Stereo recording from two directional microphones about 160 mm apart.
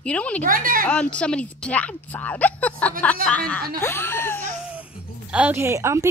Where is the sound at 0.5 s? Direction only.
60° right (ahead or behind).